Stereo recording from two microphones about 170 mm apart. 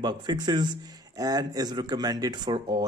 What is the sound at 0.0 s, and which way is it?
A man's voice, 25° right (ahead or behind).